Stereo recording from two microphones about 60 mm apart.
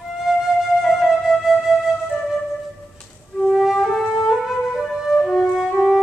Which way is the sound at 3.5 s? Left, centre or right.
Centre.